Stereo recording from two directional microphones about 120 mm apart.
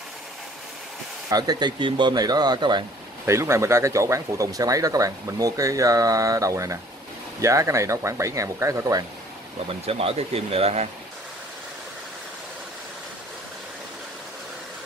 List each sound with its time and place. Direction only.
1.3 s speech: 35° right (ahead or behind)
3.3 s speech: 25° right (ahead or behind)
9.7 s speech: 50° right (ahead or behind)